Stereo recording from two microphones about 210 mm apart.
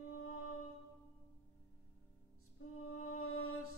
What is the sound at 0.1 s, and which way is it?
Music, 90° left.